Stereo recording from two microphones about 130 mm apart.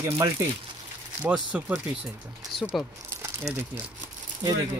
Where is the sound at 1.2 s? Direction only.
5° right (ahead or behind).